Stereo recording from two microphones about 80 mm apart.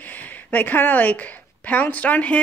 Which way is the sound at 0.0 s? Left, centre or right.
Left.